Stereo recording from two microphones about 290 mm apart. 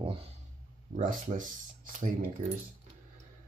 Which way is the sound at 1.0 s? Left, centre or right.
Right.